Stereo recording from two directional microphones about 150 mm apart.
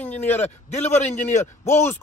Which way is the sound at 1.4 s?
15° left (ahead or behind).